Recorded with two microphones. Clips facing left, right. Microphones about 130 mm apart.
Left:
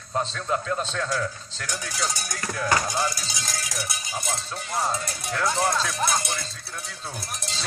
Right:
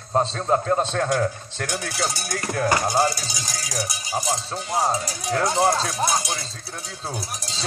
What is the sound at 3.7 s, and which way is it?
A man's voice, 40° right (ahead or behind).